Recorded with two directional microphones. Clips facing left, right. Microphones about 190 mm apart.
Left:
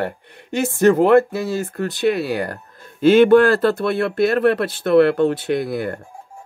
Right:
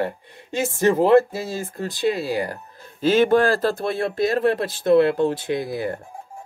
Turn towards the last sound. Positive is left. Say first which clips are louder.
# left 3 dB
turn(degrees=60)  # may be behind; listen again after turning